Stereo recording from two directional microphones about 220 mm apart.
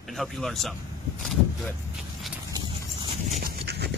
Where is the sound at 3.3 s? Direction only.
45° right (ahead or behind).